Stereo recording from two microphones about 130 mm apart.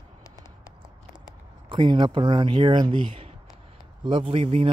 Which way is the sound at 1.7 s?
35° right (ahead or behind).